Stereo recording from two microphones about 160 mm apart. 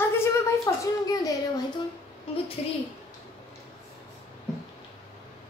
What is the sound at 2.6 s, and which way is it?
Speech, 35° left (ahead or behind).